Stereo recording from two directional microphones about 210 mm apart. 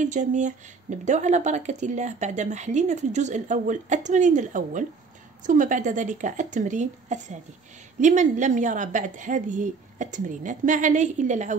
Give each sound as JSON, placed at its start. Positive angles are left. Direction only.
{"t": 0.0, "sound": "speech", "side_deg": -35}